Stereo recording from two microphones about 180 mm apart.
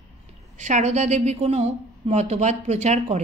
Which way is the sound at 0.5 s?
40° right (ahead or behind).